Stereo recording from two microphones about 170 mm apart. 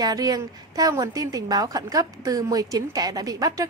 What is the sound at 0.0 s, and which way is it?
A woman's voice, 20° right (ahead or behind).